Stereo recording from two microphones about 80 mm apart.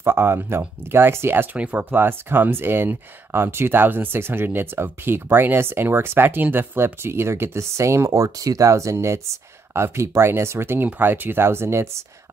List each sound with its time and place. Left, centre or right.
0.0 s speech: right